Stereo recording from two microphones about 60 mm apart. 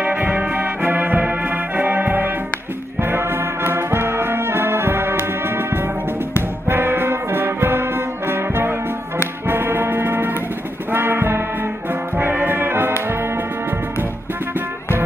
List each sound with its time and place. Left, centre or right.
0.0 s music: right
6.7 s brass instrument: right
9.5 s music: right
11.9 s brass instrument: right